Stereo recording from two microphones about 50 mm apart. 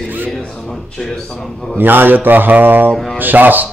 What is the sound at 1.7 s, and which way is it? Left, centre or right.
Speech, right.